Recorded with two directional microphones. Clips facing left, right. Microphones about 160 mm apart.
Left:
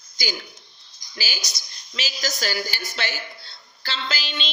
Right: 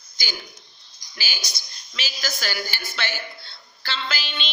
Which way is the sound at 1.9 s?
35° left (ahead or behind).